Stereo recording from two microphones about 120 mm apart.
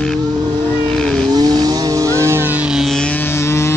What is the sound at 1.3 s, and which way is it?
Vehicle, 30° right (ahead or behind).